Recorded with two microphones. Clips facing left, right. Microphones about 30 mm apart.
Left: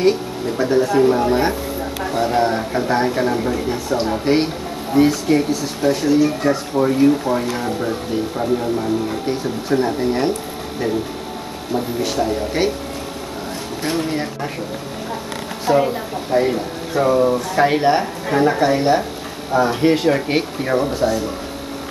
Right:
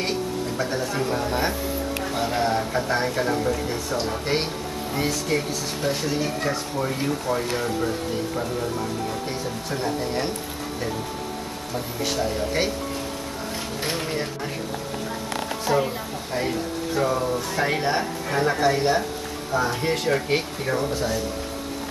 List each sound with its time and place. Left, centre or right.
0.6 s speech: centre
9.7 s speech: centre
12.6 s speech: centre
13.8 s speech: centre
15.6 s speech: centre
17.2 s speech: left; by 21.2 s centre